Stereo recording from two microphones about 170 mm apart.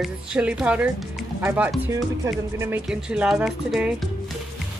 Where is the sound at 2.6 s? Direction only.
10° right (ahead or behind).